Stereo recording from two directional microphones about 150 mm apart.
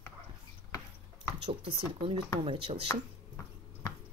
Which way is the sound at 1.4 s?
40° right (ahead or behind).